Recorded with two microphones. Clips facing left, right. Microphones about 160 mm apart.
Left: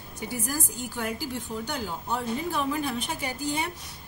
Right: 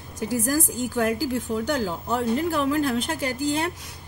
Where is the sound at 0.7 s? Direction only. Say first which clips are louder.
Right 8 dB; 90° right.